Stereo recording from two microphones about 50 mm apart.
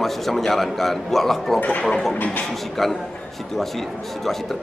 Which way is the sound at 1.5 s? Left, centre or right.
Left.